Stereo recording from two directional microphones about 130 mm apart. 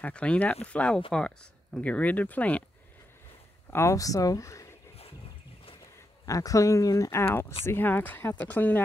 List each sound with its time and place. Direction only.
0.0 s speech: 10° left (ahead or behind)
3.7 s speech: 25° left (ahead or behind)
6.2 s speech: 25° left (ahead or behind)